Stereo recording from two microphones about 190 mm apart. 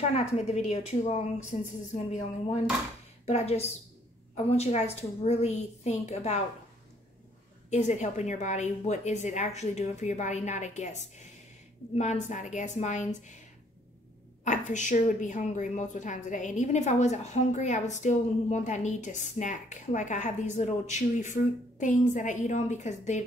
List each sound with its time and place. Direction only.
0.0 s a woman's voice: 35° left (ahead or behind)
3.3 s a woman's voice: 35° left (ahead or behind)
7.7 s a woman's voice: 40° left (ahead or behind)
14.4 s a woman's voice: 40° left (ahead or behind)